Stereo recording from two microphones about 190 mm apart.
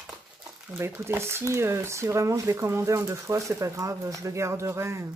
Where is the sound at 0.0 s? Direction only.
5° right (ahead or behind).